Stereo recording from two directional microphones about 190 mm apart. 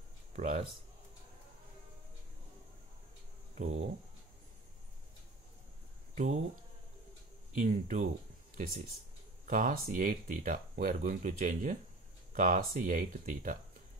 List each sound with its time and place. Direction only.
0.3 s speech: 40° right (ahead or behind)
3.5 s speech: 35° right (ahead or behind)
6.1 s speech: 35° right (ahead or behind)
7.5 s speech: 40° right (ahead or behind)
9.5 s speech: 45° right (ahead or behind)